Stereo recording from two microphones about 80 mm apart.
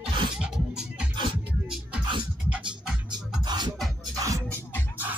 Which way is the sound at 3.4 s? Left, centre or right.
Right.